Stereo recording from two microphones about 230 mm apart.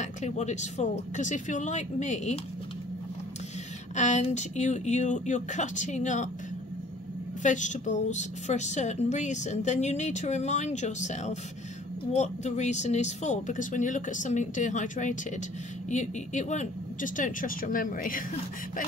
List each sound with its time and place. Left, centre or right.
0.0 s a woman's voice: left
3.9 s a woman's voice: left
7.4 s a woman's voice: left